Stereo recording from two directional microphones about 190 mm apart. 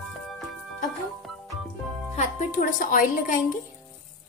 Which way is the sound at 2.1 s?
40° left (ahead or behind).